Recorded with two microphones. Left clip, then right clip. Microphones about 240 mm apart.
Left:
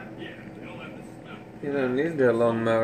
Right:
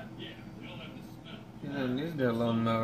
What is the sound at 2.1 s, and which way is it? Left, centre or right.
Speech, right.